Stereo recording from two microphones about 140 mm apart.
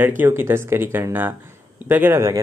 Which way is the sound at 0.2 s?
15° right (ahead or behind).